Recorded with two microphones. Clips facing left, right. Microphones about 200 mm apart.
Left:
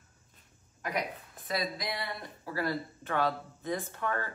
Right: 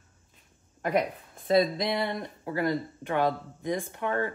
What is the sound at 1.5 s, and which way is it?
Speech, 25° right (ahead or behind).